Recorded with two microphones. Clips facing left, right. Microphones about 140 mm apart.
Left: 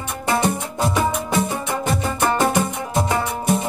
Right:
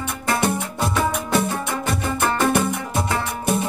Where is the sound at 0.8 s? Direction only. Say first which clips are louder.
Left 3 dB; 15° left (ahead or behind).